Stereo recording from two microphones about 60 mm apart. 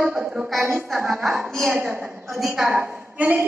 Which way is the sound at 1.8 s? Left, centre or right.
Right.